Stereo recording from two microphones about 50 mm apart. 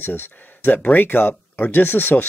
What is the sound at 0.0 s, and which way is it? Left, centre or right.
Speech, left.